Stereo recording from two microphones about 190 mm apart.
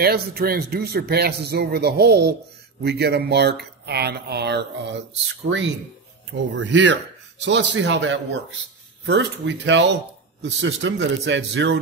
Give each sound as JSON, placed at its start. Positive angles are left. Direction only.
{"t": 0.0, "sound": "a man's voice", "side_deg": -55}